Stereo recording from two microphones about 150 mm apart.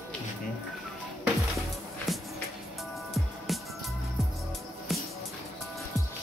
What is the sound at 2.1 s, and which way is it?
Music, centre (ahead or behind).